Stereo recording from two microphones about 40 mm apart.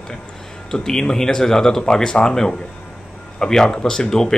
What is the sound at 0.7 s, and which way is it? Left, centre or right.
Speech, centre.